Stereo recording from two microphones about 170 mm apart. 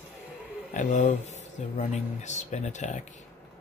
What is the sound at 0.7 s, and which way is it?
Speech, 45° left (ahead or behind).